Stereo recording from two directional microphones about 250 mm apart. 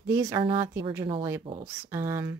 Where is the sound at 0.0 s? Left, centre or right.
Centre.